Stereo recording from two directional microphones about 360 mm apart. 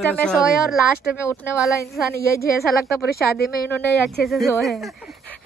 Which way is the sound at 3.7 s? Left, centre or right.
Centre.